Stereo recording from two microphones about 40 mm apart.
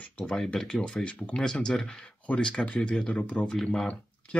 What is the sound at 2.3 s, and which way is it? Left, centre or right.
Speech, left.